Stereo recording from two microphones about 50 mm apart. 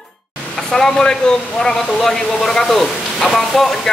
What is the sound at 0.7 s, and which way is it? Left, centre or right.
Vehicle, centre.